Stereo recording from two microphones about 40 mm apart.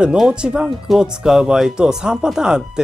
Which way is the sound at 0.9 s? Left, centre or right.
Centre.